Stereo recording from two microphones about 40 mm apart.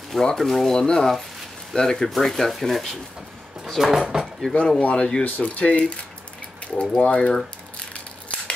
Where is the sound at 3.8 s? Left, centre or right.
Centre.